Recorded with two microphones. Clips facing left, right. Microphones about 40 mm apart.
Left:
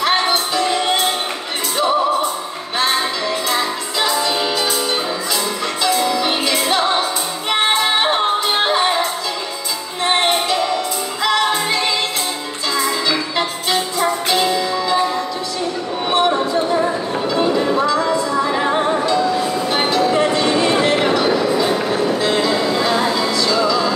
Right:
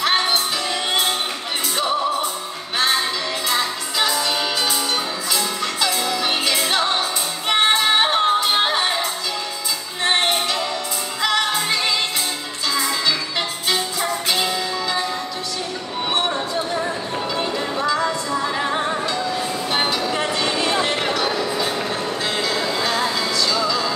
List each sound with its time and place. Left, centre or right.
0.0 s music: centre
5.9 s music: centre
10.0 s music: centre
16.3 s a sound: centre
17.4 s music: centre
19.7 s music: centre